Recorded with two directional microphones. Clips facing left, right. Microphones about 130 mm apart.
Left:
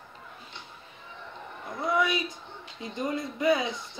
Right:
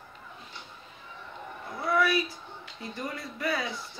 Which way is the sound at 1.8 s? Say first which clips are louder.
Right 1 dB; 20° left (ahead or behind).